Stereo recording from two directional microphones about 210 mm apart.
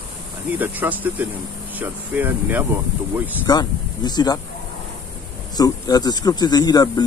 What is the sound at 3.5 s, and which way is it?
Speech, 20° left (ahead or behind).